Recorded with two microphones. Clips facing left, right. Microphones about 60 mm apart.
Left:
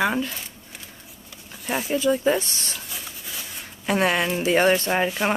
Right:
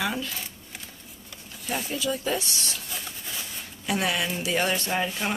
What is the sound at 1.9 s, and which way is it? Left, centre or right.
Speech, left.